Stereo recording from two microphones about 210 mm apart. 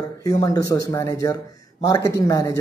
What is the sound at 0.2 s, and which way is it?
Speech, 15° left (ahead or behind).